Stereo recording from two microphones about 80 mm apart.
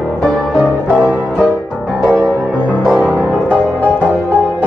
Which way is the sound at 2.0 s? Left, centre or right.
Centre.